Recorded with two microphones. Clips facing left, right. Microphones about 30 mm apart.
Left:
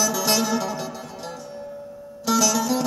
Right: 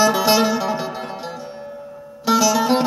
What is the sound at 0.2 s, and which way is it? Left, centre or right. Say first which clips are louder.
Music: right 5 dB; right.